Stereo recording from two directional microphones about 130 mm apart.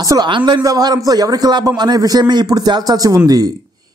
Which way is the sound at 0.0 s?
25° right (ahead or behind).